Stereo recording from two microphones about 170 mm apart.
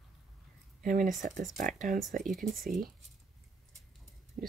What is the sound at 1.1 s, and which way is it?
Speech, centre (ahead or behind).